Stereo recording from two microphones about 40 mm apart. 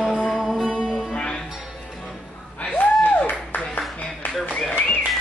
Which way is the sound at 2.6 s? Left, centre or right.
Left.